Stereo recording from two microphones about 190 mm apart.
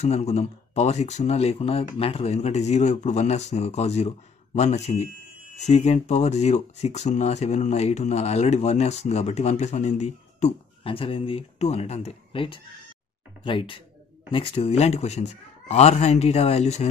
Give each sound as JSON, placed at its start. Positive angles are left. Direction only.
{"t": 0.0, "sound": "speech", "side_deg": 35}